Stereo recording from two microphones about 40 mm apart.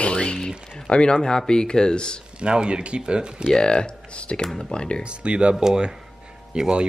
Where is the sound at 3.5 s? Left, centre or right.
Left.